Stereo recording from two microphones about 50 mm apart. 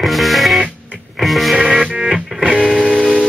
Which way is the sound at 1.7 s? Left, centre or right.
Right.